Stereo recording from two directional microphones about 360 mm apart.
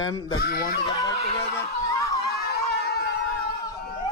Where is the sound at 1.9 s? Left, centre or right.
Centre.